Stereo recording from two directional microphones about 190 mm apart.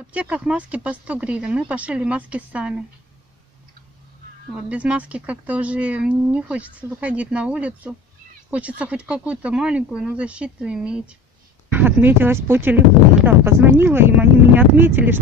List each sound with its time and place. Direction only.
0.1 s speech: 5° right (ahead or behind)
4.6 s speech: 5° right (ahead or behind)